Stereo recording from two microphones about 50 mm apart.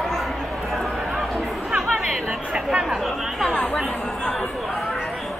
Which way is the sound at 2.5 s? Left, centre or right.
Centre.